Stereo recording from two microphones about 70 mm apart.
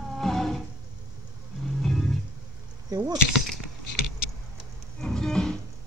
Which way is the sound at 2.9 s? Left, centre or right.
Right.